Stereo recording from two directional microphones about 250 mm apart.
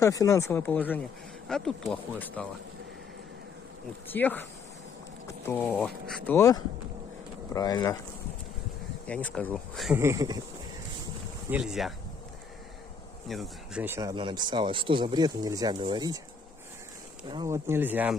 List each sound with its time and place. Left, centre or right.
0.0 s speech: centre
4.1 s speech: centre
5.5 s speech: centre
9.0 s speech: centre
9.9 s speech: centre
11.5 s speech: centre
13.3 s speech: centre
17.3 s speech: centre